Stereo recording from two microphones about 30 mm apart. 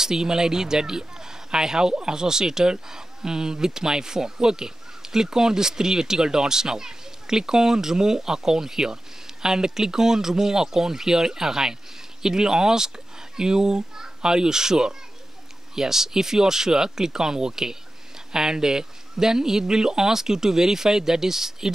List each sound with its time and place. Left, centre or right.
0.0 s speech: right